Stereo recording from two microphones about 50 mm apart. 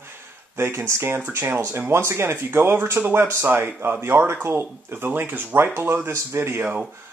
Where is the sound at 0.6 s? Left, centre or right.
Right.